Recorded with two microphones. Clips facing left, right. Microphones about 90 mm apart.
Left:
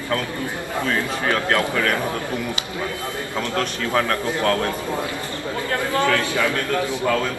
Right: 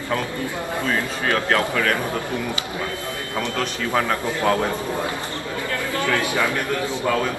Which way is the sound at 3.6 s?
5° right (ahead or behind).